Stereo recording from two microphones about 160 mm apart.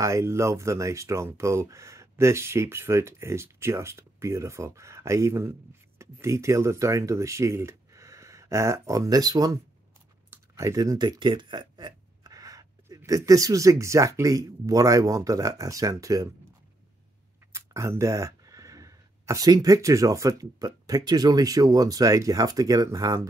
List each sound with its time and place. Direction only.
0.0 s speech: 20° right (ahead or behind)
17.5 s speech: 15° right (ahead or behind)